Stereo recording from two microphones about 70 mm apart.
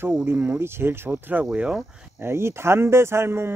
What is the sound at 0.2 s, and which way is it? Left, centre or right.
Speech, right.